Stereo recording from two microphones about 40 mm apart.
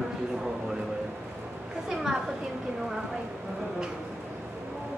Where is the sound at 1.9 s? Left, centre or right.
Centre.